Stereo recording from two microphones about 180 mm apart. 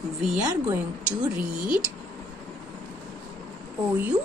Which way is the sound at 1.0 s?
5° right (ahead or behind).